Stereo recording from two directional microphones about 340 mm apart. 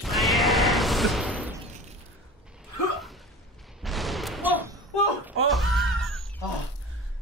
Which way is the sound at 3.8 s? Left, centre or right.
Centre.